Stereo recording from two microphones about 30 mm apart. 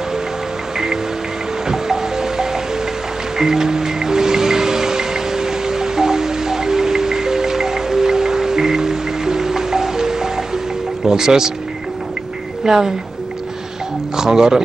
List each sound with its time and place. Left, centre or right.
1.7 s music: centre
11.1 s speech: centre
12.6 s a woman's voice: centre
14.1 s speech: centre